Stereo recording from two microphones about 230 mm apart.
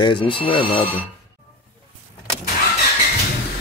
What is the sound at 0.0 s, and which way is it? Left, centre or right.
Speech, left.